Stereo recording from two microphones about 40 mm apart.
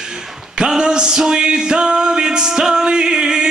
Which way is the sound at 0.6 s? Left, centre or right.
Centre.